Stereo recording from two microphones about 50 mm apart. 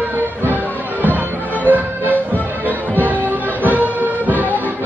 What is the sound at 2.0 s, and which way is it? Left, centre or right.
Music, left.